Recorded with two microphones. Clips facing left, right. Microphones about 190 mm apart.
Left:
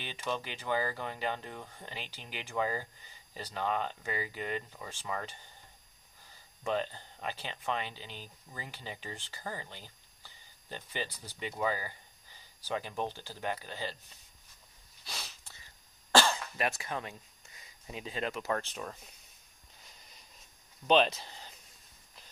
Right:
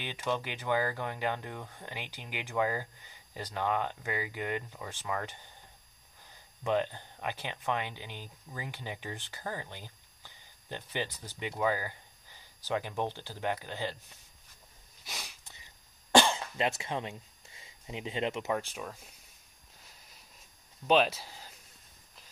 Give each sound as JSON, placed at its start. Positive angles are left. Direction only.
{"t": 0.0, "sound": "speech", "side_deg": -15}
{"t": 1.9, "sound": "speech", "side_deg": -15}
{"t": 6.6, "sound": "speech", "side_deg": -15}
{"t": 11.1, "sound": "speech", "side_deg": 10}
{"t": 11.3, "sound": "speech", "side_deg": -15}
{"t": 15.0, "sound": "cough", "side_deg": -15}
{"t": 18.5, "sound": "speech", "side_deg": -10}
{"t": 20.8, "sound": "speech", "side_deg": -5}